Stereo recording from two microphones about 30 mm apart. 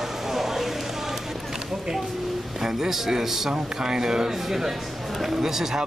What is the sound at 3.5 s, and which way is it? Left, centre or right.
Speech, right.